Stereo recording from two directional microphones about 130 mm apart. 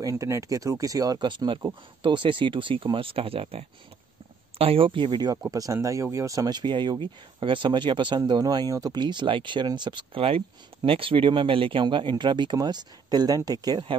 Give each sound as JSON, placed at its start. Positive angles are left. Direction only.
{"t": 0.0, "sound": "speech", "side_deg": -25}